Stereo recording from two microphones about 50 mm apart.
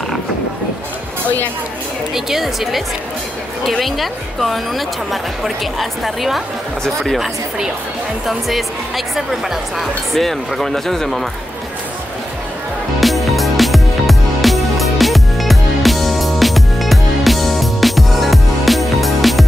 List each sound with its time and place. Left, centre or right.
2.1 s speech: centre
3.8 s speech: centre
7.2 s speech: centre
13.0 s music: centre